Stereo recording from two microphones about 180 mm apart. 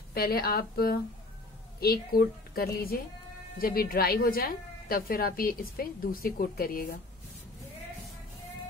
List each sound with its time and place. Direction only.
0.1 s a woman's voice: 60° left (ahead or behind)